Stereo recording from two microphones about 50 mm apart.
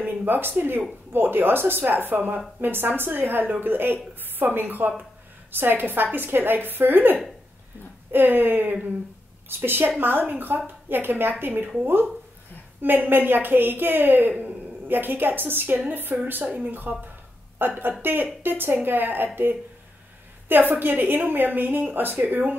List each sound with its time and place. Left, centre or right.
0.0 s a woman's voice: right